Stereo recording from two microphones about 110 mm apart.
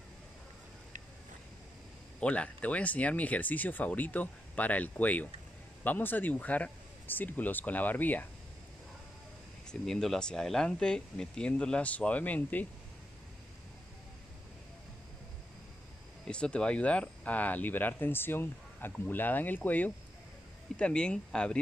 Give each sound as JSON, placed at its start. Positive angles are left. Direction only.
{"t": 2.1, "sound": "speech", "side_deg": 10}
{"t": 9.7, "sound": "speech", "side_deg": 5}
{"t": 16.3, "sound": "speech", "side_deg": 10}